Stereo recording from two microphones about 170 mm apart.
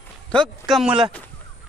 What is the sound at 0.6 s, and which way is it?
Speech, 5° right (ahead or behind).